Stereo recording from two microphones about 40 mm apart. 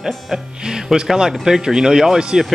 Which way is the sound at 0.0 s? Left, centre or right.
Centre.